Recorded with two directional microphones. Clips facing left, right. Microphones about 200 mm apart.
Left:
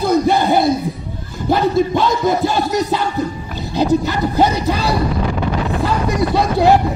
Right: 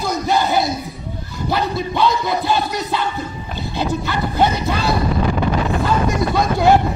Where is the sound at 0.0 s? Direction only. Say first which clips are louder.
Left 5 dB; 55° left (ahead or behind).